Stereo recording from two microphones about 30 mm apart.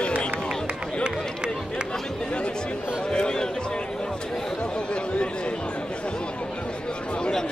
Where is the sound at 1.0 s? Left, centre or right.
Right.